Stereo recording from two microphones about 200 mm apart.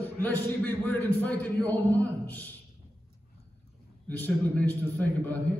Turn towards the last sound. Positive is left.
turn(degrees=10)  # may be behind; listen again after turning